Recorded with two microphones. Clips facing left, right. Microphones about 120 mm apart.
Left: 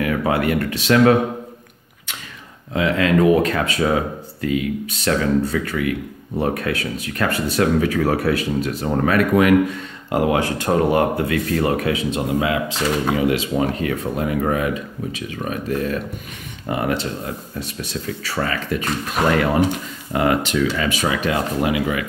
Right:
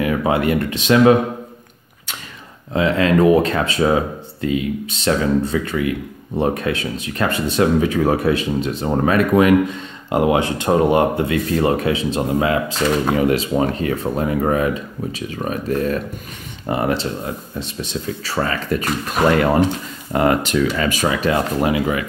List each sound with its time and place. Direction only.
0.0 s speech: 20° right (ahead or behind)
2.7 s speech: 30° right (ahead or behind)
20.1 s speech: 45° right (ahead or behind)